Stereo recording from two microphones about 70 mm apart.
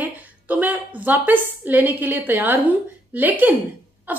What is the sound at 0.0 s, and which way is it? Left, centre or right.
A woman's voice, right.